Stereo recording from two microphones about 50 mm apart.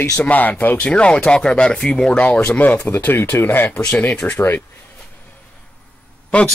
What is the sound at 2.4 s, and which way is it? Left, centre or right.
Speech, left.